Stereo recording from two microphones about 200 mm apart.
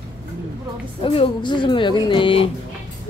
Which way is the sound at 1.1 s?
25° left (ahead or behind).